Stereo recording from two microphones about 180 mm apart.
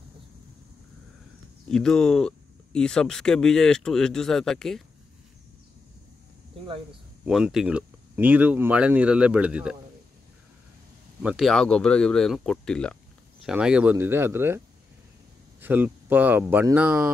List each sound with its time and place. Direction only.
1.7 s speech: 5° left (ahead or behind)
7.2 s speech: 5° right (ahead or behind)
11.2 s speech: centre (ahead or behind)
15.6 s speech: 10° right (ahead or behind)